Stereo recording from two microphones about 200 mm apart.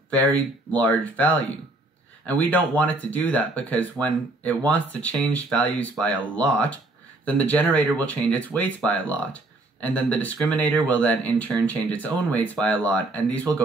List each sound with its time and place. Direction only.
0.7 s speech: 10° left (ahead or behind)